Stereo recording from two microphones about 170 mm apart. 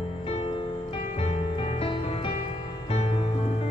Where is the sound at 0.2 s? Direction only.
35° left (ahead or behind).